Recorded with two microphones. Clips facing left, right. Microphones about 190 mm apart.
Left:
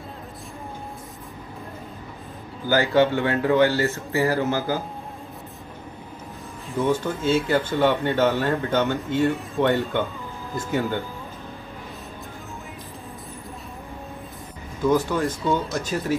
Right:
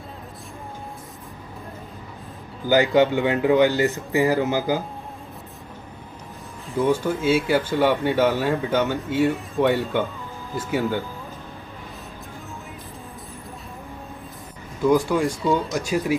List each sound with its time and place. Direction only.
2.7 s speech: 15° right (ahead or behind)
6.9 s speech: 10° right (ahead or behind)
14.9 s speech: 10° right (ahead or behind)